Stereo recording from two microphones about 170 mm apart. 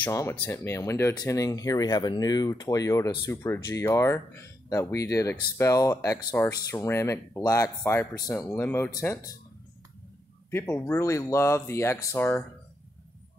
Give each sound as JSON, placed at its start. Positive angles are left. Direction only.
{"t": 0.0, "sound": "speech", "side_deg": 15}
{"t": 10.5, "sound": "speech", "side_deg": 15}